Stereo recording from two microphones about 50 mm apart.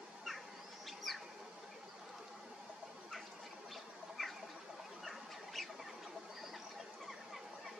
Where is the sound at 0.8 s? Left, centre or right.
Centre.